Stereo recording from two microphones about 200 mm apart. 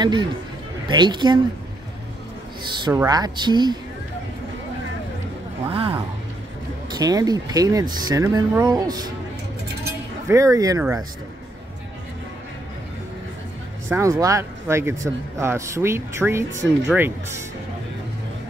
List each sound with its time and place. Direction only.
0.0 s speech: 20° right (ahead or behind)
2.9 s speech: 15° right (ahead or behind)
5.7 s a sound: 30° right (ahead or behind)
6.9 s speech: 20° right (ahead or behind)
10.2 s speech: 15° right (ahead or behind)
13.8 s speech: 15° right (ahead or behind)